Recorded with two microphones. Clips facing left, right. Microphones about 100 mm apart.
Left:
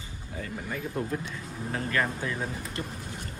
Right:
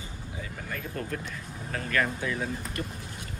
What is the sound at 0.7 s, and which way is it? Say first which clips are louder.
Speech: left 3 dB; 15° left (ahead or behind).